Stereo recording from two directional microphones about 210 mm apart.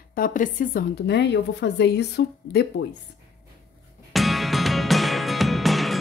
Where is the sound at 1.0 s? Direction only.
55° left (ahead or behind).